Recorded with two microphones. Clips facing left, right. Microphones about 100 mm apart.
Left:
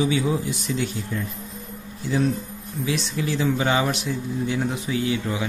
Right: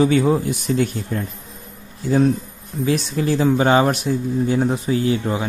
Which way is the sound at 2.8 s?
45° right (ahead or behind).